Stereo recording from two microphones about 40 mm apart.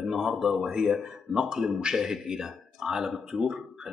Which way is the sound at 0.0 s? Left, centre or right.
Centre.